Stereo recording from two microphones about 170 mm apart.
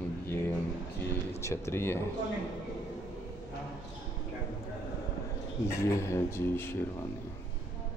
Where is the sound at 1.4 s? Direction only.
15° left (ahead or behind).